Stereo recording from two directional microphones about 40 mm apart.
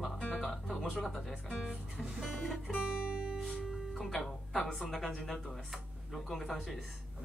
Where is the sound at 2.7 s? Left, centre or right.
Centre.